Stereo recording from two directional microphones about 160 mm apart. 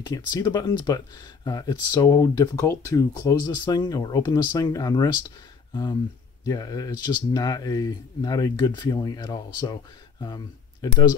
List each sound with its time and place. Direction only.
0.0 s speech: 25° left (ahead or behind)